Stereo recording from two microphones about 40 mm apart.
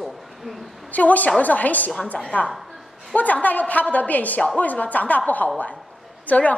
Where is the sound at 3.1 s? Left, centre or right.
Left.